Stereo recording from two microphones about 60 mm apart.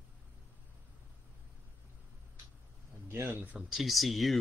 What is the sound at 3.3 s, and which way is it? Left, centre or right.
Speech, right.